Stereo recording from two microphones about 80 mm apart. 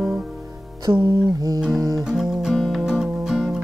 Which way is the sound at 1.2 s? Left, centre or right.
Right.